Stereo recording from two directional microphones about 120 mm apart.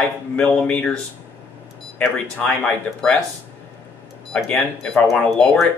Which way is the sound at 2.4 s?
5° left (ahead or behind).